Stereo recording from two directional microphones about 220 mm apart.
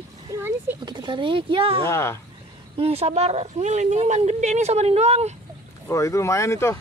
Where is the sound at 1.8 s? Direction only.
10° left (ahead or behind).